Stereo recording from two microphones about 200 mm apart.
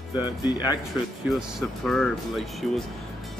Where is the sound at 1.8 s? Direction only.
Centre (ahead or behind).